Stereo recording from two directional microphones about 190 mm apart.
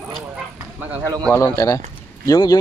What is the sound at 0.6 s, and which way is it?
Speech, 10° right (ahead or behind).